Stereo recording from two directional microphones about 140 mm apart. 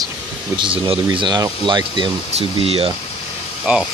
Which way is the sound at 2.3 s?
45° right (ahead or behind).